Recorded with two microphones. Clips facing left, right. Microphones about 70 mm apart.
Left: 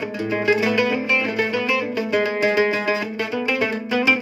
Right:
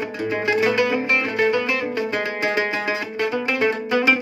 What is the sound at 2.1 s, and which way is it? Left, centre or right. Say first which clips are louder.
Music: left 4 dB; right.